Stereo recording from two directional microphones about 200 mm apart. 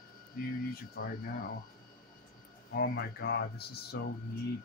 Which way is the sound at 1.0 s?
50° left (ahead or behind).